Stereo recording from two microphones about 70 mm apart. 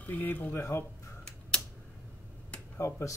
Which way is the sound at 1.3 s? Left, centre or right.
Centre.